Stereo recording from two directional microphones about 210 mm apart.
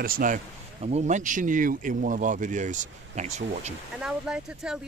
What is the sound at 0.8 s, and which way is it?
Speech, 30° right (ahead or behind).